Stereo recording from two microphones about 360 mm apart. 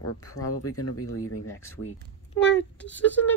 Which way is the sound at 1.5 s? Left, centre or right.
Centre.